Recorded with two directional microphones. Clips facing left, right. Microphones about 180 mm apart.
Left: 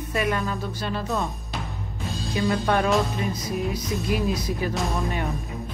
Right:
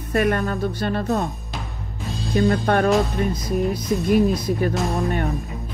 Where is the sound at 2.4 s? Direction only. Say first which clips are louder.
Right 4 dB; 45° right (ahead or behind).